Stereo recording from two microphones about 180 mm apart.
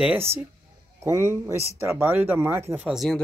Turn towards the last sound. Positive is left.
turn(degrees=0)  # may be behind; listen again after turning